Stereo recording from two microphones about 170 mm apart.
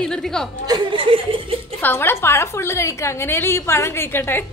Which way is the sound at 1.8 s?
10° left (ahead or behind).